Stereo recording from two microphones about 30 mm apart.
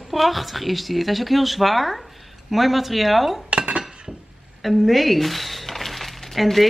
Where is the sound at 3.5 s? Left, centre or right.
Right.